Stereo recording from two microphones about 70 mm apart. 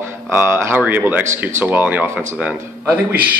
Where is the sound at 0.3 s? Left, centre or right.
Right.